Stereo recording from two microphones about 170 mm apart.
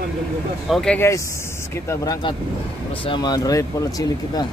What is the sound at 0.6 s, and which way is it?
Speech, centre (ahead or behind).